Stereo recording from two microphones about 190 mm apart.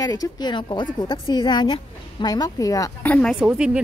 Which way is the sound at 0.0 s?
20° left (ahead or behind).